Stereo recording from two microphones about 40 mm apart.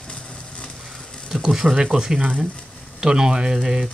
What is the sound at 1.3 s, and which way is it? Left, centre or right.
Speech, centre.